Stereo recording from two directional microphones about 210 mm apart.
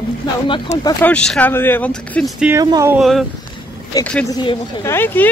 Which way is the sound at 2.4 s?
15° right (ahead or behind).